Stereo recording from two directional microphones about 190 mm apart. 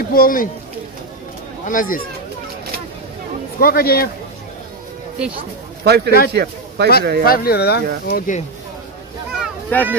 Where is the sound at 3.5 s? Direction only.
50° left (ahead or behind).